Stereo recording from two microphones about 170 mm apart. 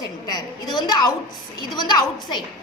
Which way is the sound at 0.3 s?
25° left (ahead or behind).